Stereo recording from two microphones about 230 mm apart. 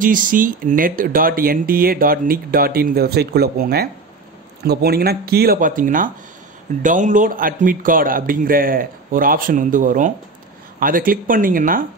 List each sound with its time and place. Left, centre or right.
0.0 s speech: right